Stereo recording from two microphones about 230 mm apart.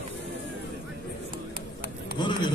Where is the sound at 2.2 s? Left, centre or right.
Centre.